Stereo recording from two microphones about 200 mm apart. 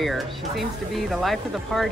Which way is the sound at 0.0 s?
Centre (ahead or behind).